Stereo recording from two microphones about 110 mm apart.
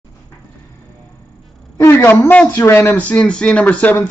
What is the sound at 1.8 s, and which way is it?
Speech, 20° left (ahead or behind).